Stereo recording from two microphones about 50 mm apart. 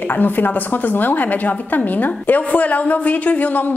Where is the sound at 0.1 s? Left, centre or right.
Left.